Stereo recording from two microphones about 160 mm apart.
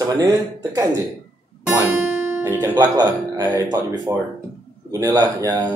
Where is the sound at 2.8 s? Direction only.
25° right (ahead or behind).